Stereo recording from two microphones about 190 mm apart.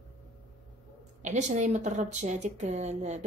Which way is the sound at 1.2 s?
40° right (ahead or behind).